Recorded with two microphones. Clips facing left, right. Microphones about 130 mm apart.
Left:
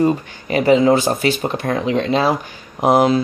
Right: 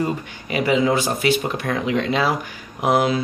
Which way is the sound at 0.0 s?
30° left (ahead or behind).